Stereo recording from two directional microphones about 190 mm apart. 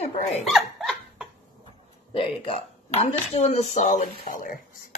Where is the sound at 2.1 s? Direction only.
30° left (ahead or behind); by 4.5 s 45° left (ahead or behind).